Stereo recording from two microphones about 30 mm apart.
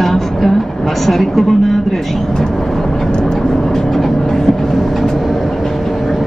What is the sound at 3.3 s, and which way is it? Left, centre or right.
Vehicle, centre.